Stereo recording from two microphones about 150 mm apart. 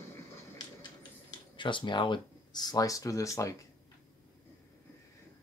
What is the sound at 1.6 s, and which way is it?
Speech, 35° left (ahead or behind).